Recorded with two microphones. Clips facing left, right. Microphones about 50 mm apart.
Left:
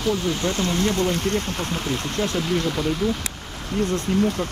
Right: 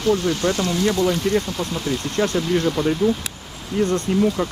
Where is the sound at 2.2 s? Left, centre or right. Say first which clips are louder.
Right 5 dB; right.